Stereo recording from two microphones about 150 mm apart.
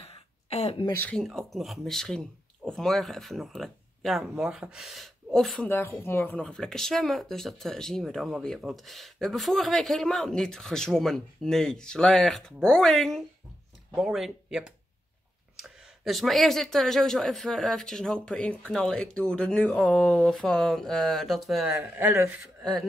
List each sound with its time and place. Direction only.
0.0 s a sound: 40° left (ahead or behind)
0.9 s speech: 10° left (ahead or behind)
5.7 s speech: 15° left (ahead or behind); by 22.4 s 15° right (ahead or behind)
22.6 s speech: centre (ahead or behind)